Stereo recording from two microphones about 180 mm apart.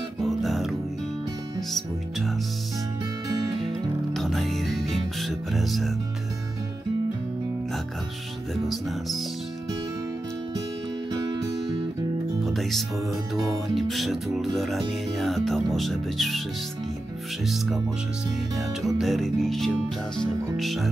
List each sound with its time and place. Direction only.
0.2 s music: centre (ahead or behind)
3.6 s music: centre (ahead or behind)
11.1 s music: 20° right (ahead or behind)
12.4 s music: centre (ahead or behind)
18.8 s music: centre (ahead or behind)